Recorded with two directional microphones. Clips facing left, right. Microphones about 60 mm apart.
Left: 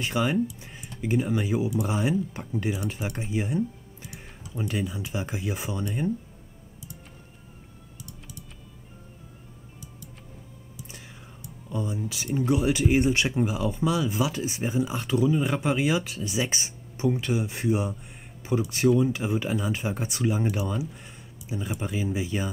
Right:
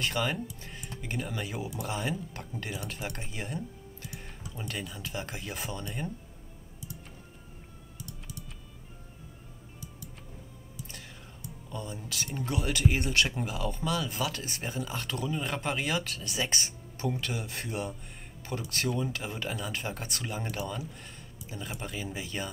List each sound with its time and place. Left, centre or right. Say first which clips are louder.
0.0 s speech: left 6 dB; centre
11.7 s speech: left 8 dB; centre